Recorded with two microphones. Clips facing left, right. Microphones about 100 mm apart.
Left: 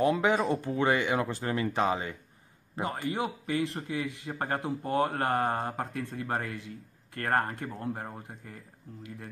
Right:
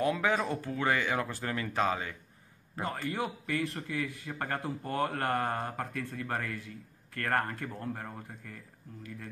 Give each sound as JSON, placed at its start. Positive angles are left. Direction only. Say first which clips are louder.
{"t": 0.0, "sound": "a man's voice", "louder": "left 4 dB", "side_deg": 20}